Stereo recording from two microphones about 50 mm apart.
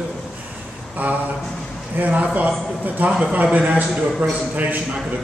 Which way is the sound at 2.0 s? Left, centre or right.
Right.